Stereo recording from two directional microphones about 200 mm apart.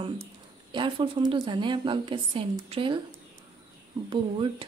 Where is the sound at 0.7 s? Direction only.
25° right (ahead or behind).